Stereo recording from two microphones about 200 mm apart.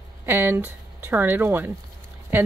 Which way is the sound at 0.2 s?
10° right (ahead or behind).